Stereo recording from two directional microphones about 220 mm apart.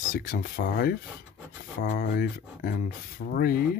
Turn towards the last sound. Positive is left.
turn(degrees=40)  # may be behind; listen again after turning